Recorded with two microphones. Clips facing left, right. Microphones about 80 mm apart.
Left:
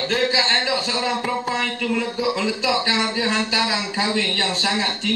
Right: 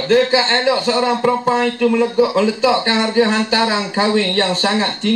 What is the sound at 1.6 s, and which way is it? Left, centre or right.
Speech, right.